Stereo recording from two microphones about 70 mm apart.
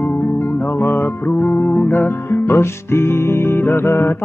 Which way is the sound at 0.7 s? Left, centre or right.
Left.